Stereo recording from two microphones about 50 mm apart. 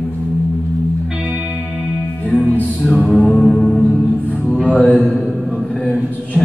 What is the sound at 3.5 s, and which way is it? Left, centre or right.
Gong, centre.